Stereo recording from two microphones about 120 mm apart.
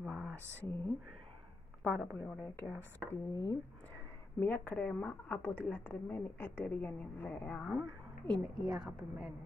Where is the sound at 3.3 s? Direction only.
30° left (ahead or behind).